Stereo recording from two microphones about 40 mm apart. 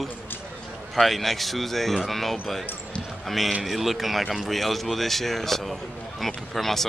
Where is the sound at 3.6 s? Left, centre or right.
Centre.